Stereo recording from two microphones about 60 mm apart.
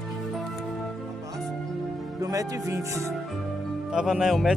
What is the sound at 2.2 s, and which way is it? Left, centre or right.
Speech, right.